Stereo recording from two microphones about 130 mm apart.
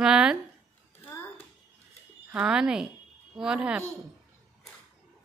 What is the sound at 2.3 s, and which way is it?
A woman's voice, 5° right (ahead or behind).